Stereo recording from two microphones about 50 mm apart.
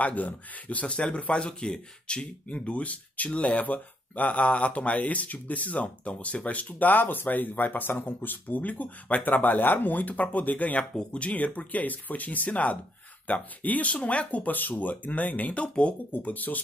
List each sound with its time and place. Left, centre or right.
0.0 s speech: left
16.1 s speech: left